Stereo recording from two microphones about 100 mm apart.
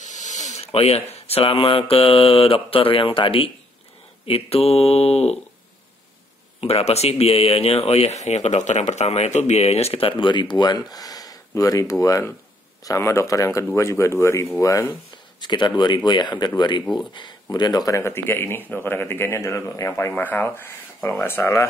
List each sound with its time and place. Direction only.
0.6 s speech: 85° left; by 3.5 s 65° left (ahead or behind)
4.3 s speech: 85° left
6.6 s speech: 90° left; by 14.9 s 30° left (ahead or behind)
15.4 s speech: 50° left (ahead or behind); by 21.6 s 25° left (ahead or behind)